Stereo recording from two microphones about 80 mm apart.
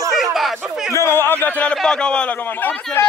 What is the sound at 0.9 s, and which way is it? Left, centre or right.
A man's voice, left.